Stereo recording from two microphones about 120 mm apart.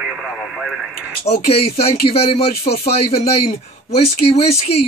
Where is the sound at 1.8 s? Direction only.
50° left (ahead or behind).